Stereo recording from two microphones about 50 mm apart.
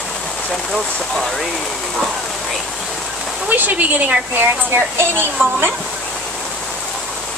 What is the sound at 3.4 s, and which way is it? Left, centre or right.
A woman's voice, right.